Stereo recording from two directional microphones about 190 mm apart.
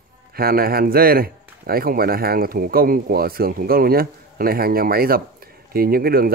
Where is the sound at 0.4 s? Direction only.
50° right (ahead or behind).